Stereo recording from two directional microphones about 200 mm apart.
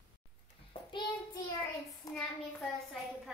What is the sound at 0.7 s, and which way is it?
Speech, 25° left (ahead or behind).